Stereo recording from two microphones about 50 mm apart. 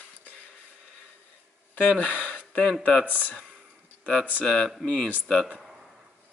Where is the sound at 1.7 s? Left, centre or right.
Left.